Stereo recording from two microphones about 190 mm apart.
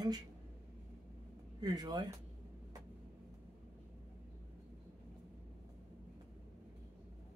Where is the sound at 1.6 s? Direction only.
20° right (ahead or behind).